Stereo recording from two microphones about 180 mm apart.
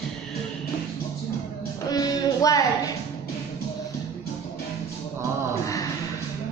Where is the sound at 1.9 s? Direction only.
20° left (ahead or behind).